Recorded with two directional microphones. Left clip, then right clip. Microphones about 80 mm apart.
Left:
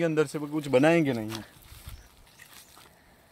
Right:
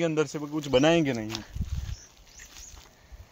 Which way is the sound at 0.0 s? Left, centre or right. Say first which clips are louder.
Left 1 dB; left.